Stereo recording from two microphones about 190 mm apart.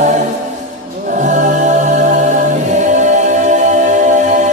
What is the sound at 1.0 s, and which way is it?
Music, 40° right (ahead or behind).